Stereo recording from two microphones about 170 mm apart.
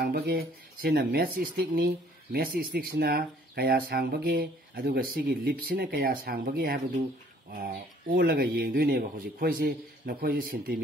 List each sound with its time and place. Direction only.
0.0 s speech: 65° right (ahead or behind)